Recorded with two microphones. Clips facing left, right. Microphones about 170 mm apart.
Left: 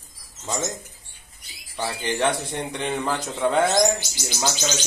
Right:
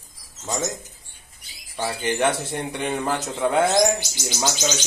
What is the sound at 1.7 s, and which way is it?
Speech, 10° right (ahead or behind).